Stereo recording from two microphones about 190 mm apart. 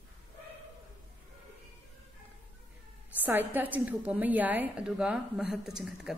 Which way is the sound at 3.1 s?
10° right (ahead or behind).